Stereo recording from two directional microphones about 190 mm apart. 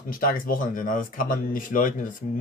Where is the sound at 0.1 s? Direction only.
50° left (ahead or behind).